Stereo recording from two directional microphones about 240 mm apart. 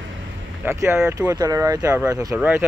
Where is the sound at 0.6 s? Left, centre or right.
Centre.